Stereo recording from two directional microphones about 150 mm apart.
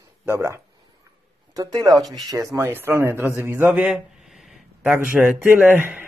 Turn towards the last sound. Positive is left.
turn(degrees=-10)  # may be behind; listen again after turning